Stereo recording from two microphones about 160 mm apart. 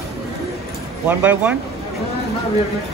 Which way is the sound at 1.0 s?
10° right (ahead or behind).